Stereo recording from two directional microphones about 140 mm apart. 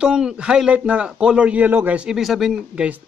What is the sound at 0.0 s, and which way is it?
A man's voice, 5° right (ahead or behind).